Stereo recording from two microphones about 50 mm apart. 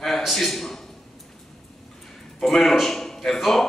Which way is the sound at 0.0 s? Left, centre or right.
Centre.